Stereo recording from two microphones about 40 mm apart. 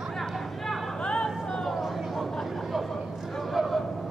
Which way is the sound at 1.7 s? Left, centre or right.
Centre.